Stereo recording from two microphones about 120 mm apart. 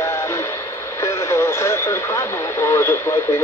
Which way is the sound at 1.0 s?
25° left (ahead or behind).